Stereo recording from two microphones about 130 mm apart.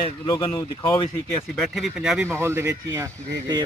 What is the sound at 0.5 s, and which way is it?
Speech, 20° left (ahead or behind).